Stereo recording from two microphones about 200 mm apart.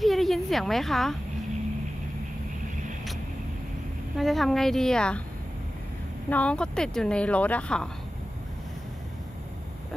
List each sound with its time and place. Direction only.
0.0 s a sound: centre (ahead or behind)
4.2 s speech: centre (ahead or behind)
6.3 s speech: 5° left (ahead or behind)